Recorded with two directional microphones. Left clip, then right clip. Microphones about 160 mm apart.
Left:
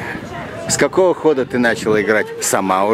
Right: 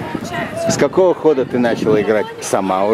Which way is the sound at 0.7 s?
20° left (ahead or behind).